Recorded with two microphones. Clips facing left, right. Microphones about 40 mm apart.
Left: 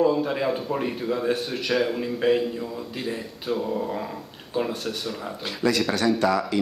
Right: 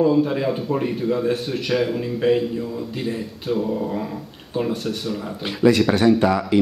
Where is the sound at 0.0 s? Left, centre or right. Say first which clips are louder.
Right 4 dB; centre.